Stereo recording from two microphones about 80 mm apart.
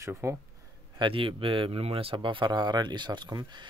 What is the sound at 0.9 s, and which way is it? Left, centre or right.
A man's voice, right.